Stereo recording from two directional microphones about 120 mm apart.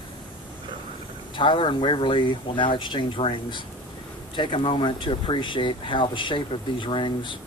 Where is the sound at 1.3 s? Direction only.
45° left (ahead or behind).